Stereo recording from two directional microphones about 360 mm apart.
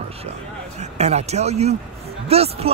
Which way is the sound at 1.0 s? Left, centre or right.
Centre.